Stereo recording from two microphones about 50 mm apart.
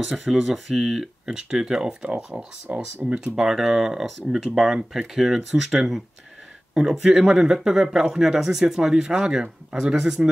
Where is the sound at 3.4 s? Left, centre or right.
Centre.